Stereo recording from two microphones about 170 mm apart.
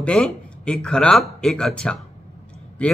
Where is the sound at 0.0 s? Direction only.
5° left (ahead or behind).